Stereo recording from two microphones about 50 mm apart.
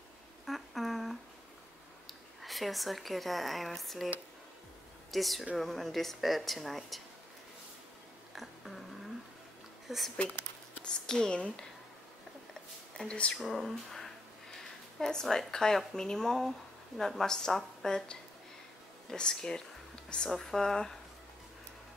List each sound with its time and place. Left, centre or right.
0.5 s a sound: centre
2.4 s speech: centre
5.1 s speech: centre
8.4 s cat: centre
9.8 s speech: centre
10.8 s speech: centre
13.0 s speech: centre
13.4 s speech: centre
19.0 s speech: centre
20.2 s speech: centre